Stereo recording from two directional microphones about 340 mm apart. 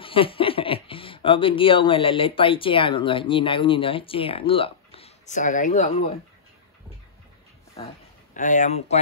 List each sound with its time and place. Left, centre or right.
0.0 s speech: centre
8.4 s speech: left